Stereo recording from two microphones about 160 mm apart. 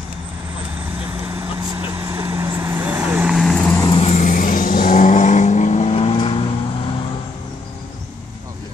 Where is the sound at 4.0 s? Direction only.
45° left (ahead or behind).